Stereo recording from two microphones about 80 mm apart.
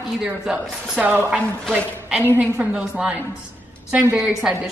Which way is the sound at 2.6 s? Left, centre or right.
Centre.